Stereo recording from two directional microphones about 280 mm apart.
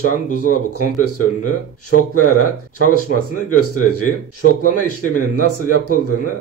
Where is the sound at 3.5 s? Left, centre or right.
Left.